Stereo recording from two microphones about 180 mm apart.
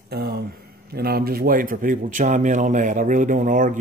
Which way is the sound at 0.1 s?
60° right (ahead or behind).